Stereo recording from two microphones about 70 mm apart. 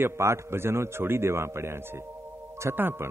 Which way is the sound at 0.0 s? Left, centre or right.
Right.